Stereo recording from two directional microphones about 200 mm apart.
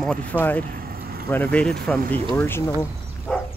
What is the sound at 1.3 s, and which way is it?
Speech, 5° left (ahead or behind).